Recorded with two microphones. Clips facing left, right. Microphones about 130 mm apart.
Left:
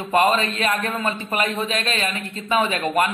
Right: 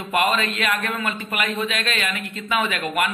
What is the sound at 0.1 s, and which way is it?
A man's voice, 35° left (ahead or behind).